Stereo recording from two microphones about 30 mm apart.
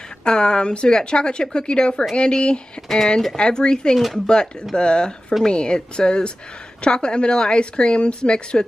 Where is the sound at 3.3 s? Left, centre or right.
Left.